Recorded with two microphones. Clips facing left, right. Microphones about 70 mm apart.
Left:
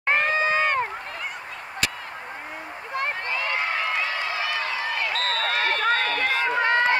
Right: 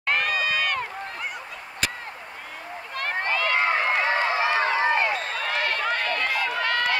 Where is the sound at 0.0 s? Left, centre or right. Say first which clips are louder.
Left 3 dB; left.